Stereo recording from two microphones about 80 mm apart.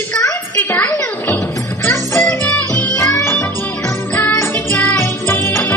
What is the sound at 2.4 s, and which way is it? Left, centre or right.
Music, centre.